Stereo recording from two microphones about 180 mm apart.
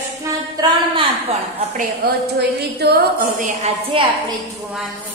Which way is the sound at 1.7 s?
60° right (ahead or behind).